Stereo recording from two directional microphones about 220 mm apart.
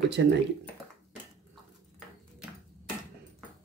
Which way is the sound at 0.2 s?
50° right (ahead or behind).